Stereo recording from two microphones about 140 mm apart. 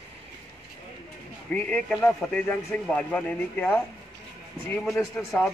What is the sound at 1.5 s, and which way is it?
Speech, 10° left (ahead or behind).